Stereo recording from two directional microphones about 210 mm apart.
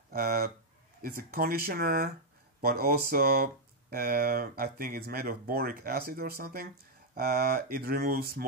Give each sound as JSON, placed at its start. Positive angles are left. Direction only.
{"t": 0.1, "sound": "speech", "side_deg": -45}